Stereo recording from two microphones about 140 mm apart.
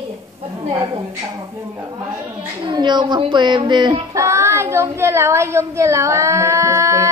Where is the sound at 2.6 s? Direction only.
35° right (ahead or behind).